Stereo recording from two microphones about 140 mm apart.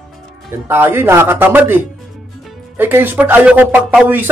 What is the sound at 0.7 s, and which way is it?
Speech, 15° right (ahead or behind).